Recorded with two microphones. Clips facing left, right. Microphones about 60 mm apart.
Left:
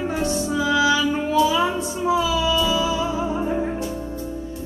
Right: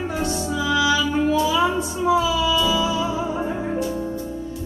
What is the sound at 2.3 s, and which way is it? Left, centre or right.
Music, left.